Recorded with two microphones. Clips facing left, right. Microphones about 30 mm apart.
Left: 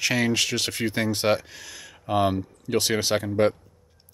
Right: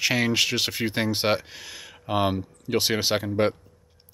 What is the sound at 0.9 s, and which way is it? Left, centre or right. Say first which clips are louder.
Speech: left 2 dB; right.